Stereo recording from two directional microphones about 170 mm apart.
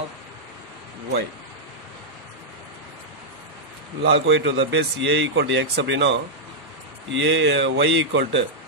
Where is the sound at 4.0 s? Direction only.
90° right.